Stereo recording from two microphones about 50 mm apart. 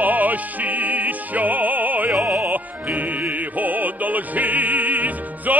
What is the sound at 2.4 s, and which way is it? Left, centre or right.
Music, right.